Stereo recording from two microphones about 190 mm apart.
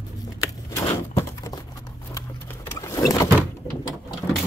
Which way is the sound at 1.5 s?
15° left (ahead or behind).